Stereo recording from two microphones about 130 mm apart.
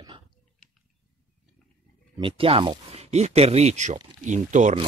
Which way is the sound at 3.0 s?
55° right (ahead or behind).